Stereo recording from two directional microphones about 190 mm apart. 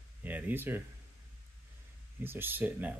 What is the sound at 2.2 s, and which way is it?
Speech, 10° right (ahead or behind).